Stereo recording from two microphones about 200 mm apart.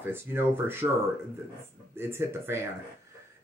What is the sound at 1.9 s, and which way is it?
Speech, 10° right (ahead or behind).